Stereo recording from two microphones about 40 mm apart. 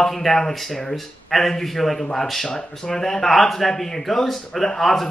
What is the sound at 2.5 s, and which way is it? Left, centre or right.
Speech, centre.